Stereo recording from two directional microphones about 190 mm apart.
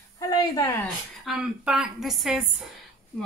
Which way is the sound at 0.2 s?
20° left (ahead or behind).